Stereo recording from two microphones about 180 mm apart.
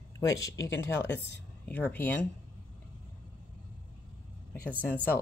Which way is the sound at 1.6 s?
10° left (ahead or behind).